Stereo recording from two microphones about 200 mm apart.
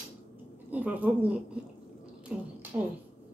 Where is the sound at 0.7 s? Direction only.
10° right (ahead or behind).